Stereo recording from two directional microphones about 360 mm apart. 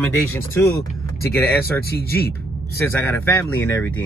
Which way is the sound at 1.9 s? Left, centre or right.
Left.